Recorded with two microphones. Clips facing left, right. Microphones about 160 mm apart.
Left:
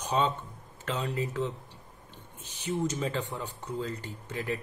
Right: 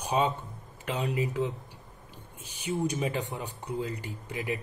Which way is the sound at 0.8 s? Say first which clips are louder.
Right 2 dB; 10° right (ahead or behind).